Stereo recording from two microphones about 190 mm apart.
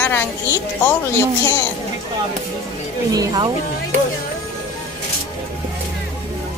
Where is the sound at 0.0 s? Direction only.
10° left (ahead or behind).